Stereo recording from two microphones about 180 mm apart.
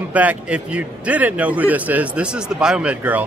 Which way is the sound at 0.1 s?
10° right (ahead or behind).